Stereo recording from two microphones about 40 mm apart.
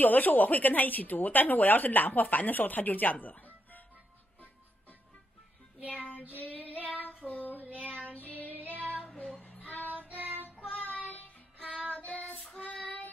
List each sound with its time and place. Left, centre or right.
0.0 s speech: left
6.0 s child singing: left
9.2 s child singing: left
10.0 s child singing: right
10.6 s child singing: left
11.6 s child singing: right
12.5 s child singing: left